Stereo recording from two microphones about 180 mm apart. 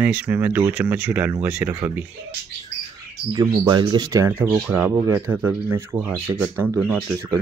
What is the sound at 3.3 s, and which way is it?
Speech, 20° right (ahead or behind).